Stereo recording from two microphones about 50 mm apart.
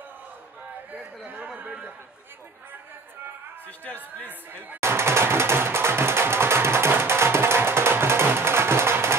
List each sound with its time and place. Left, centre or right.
1.5 s a man's voice: right
3.6 s speech: left
4.7 s music: right